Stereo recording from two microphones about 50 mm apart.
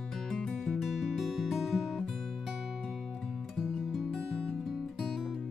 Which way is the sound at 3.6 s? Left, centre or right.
Centre.